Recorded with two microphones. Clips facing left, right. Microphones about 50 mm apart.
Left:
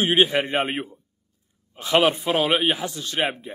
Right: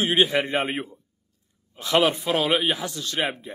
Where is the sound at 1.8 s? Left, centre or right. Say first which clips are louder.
Left 2 dB; left.